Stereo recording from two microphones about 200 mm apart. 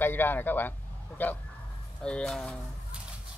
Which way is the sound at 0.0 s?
10° left (ahead or behind).